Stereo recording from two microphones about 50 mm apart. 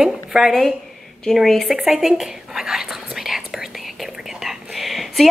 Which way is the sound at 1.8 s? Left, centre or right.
Centre.